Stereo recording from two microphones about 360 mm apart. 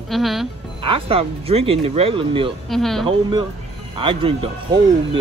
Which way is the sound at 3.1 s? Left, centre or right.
Centre.